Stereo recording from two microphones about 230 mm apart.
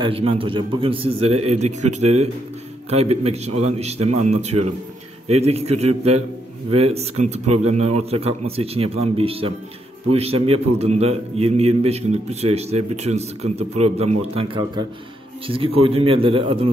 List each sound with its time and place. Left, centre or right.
0.0 s a man's voice: right